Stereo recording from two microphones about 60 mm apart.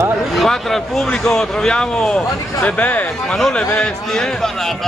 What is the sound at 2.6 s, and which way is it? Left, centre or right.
Speech, left.